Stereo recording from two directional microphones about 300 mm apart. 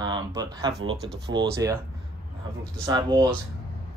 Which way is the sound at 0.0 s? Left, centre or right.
Centre.